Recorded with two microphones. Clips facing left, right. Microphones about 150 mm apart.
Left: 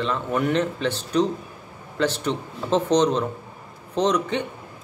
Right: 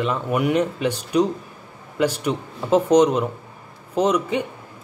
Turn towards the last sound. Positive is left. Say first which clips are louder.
# right 2 dB
turn(degrees=-10)  # may be behind; listen again after turning